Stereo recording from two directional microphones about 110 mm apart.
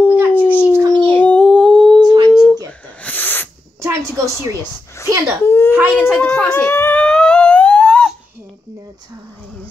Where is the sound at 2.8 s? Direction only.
10° left (ahead or behind).